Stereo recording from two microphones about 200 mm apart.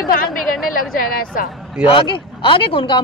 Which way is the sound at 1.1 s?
45° left (ahead or behind).